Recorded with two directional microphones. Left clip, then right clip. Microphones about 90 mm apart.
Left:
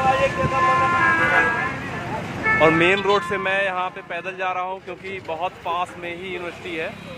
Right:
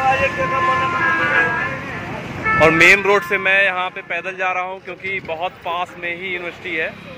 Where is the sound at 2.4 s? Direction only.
10° right (ahead or behind).